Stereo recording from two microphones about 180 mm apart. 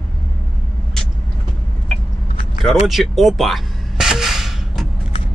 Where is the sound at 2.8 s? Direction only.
Centre (ahead or behind).